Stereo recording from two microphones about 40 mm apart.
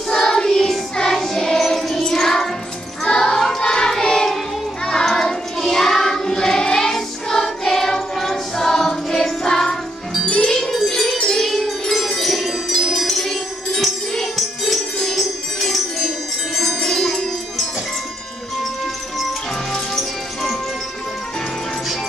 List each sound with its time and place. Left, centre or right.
0.1 s music: centre
3.1 s choir: centre
5.0 s child singing: centre
10.2 s music: left
10.5 s wind chime: centre
13.1 s music: centre
16.5 s wind chime: centre